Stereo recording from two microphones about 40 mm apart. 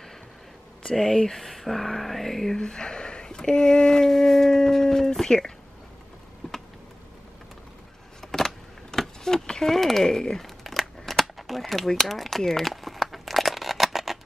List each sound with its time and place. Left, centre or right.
0.9 s speech: centre
1.4 s a sound: centre
2.6 s speech: centre
8.2 s keys jangling: centre
9.7 s speech: centre
10.4 s crumpling: centre